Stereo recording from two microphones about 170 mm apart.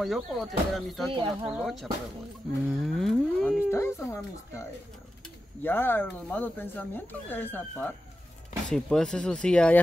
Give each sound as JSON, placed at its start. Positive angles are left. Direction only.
{"t": 0.0, "sound": "speech", "side_deg": 0}
{"t": 1.1, "sound": "speech", "side_deg": -30}
{"t": 1.5, "sound": "speech", "side_deg": 0}
{"t": 2.9, "sound": "a sound", "side_deg": 0}
{"t": 3.7, "sound": "speech", "side_deg": 15}